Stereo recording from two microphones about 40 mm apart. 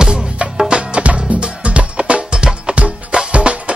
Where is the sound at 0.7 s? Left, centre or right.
Right.